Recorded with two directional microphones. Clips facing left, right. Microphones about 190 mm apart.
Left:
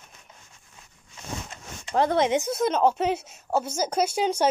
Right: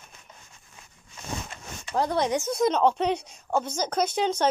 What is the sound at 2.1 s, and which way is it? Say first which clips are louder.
Speech: left 2 dB; 20° left (ahead or behind).